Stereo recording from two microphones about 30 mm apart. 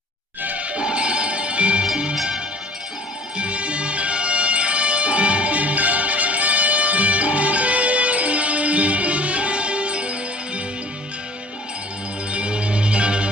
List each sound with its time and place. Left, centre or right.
0.7 s music: right
3.3 s music: right
12.3 s music: right